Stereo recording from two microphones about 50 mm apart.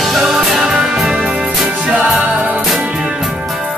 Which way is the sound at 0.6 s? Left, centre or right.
Centre.